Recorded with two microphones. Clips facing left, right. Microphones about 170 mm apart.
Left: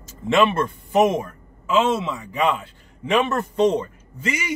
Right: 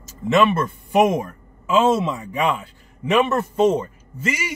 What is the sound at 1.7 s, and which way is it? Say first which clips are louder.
Speech: right 3 dB; 40° right (ahead or behind).